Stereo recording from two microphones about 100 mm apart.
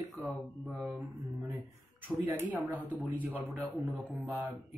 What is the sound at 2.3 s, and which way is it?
Speech, 15° right (ahead or behind).